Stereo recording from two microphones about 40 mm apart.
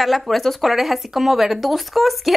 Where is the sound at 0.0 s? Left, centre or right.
Centre.